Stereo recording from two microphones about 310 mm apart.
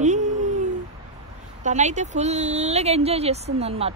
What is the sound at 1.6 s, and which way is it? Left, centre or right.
Speech, right.